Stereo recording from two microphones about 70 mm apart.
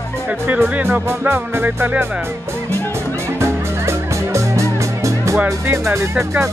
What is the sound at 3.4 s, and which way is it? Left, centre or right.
Music, right.